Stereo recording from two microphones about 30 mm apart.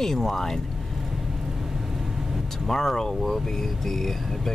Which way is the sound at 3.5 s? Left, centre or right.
Centre.